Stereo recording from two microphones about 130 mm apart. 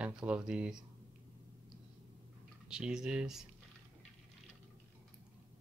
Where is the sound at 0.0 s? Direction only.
10° right (ahead or behind).